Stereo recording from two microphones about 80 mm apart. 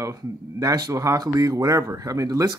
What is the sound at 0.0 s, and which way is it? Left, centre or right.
Speech, right.